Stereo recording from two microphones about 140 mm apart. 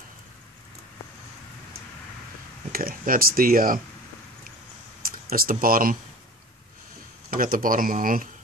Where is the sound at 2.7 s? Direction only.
90° right.